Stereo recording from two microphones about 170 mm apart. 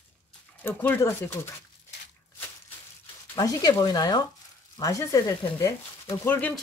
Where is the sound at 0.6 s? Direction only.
10° left (ahead or behind).